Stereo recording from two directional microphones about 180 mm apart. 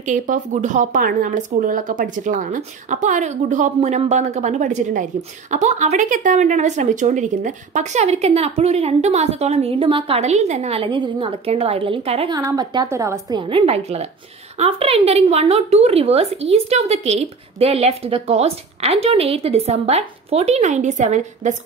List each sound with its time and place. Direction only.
0.0 s speech: 45° right (ahead or behind)